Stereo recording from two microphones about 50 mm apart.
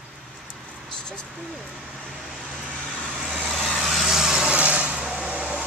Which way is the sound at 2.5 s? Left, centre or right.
Centre.